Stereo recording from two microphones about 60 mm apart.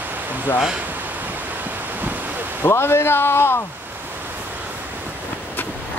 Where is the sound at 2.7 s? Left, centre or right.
Left.